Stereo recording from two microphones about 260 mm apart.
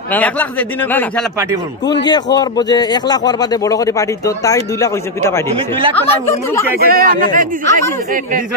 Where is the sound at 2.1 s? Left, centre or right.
Centre.